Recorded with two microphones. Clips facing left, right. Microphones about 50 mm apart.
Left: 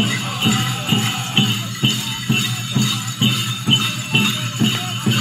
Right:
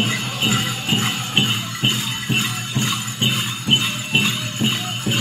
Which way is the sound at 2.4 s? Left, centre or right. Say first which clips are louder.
Left 2 dB; right.